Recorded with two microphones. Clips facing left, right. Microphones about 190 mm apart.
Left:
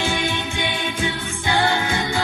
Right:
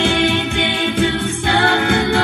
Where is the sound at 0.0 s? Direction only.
65° right (ahead or behind).